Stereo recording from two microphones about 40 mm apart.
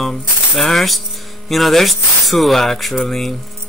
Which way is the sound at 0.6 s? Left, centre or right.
Centre.